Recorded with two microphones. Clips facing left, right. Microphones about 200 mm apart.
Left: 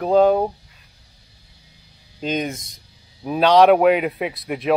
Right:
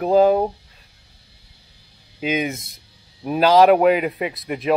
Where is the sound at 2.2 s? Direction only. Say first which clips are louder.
Right 1 dB; 5° right (ahead or behind).